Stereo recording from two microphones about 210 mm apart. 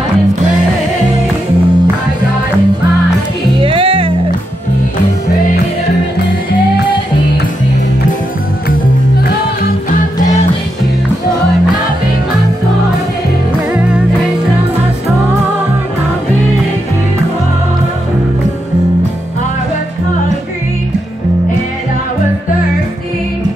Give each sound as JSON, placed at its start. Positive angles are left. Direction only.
{"t": 3.6, "sound": "music", "side_deg": -25}